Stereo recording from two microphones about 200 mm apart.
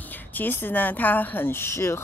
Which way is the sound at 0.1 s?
10° left (ahead or behind).